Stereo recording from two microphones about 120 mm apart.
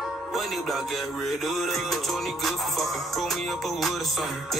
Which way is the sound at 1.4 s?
Centre (ahead or behind).